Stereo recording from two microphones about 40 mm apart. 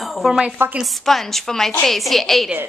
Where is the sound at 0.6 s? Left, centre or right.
Right.